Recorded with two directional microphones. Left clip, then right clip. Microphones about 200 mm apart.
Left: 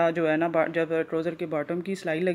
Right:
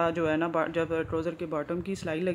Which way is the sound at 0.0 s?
5° left (ahead or behind).